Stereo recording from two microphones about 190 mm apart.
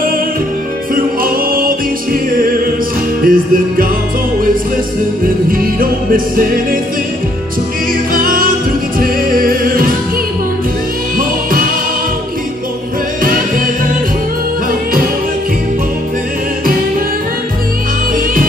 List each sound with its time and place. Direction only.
0.9 s a capella: 50° right (ahead or behind)
2.3 s music: 50° right (ahead or behind)
5.5 s music: 45° right (ahead or behind)
8.1 s music: 50° right (ahead or behind)